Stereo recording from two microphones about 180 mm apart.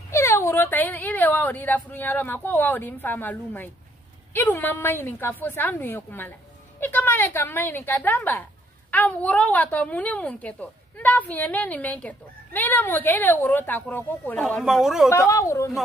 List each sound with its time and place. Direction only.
0.1 s a woman's voice: 15° left (ahead or behind)
14.6 s speech: centre (ahead or behind)
15.0 s a woman's voice: 15° left (ahead or behind)